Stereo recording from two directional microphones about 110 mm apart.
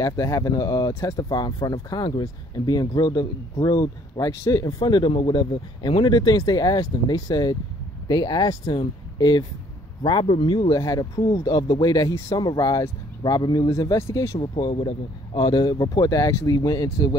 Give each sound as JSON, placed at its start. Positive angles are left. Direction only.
{"t": 0.0, "sound": "speech", "side_deg": 30}
{"t": 10.7, "sound": "speech", "side_deg": 35}
{"t": 13.7, "sound": "speech", "side_deg": 25}
{"t": 14.8, "sound": "speech", "side_deg": 40}